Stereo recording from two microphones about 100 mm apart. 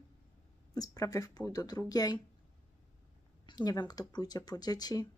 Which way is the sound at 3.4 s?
45° left (ahead or behind).